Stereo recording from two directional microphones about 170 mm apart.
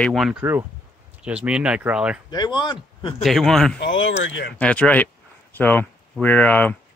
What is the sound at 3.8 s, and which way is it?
Speech, 90° left.